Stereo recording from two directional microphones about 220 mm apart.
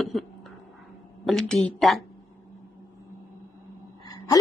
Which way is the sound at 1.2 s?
Centre (ahead or behind).